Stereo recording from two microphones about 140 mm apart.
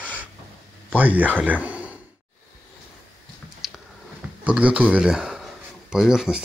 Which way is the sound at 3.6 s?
Centre (ahead or behind).